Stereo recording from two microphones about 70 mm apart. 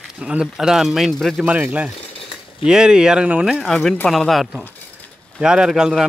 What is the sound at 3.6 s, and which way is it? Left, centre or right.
Speech, centre.